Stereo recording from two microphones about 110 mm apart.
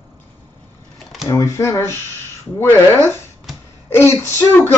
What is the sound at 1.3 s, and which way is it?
Speech, 25° left (ahead or behind).